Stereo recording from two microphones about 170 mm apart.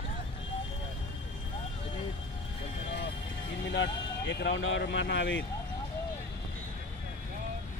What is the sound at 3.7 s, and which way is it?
Speech, 90° left.